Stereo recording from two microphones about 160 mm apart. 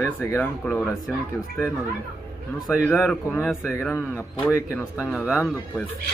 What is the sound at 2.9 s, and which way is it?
Speech, centre (ahead or behind).